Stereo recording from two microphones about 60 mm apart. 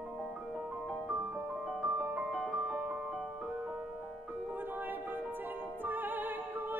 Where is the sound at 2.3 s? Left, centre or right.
Centre.